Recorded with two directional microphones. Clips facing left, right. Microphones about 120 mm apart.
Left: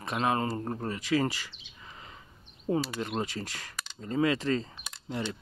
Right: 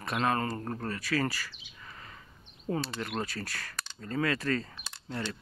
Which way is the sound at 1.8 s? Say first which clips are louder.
Even; 20° left (ahead or behind).